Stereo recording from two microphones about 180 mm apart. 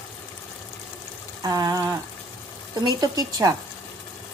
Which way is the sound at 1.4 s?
20° right (ahead or behind).